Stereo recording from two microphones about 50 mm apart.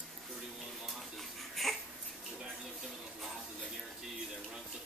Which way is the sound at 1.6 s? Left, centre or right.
Centre.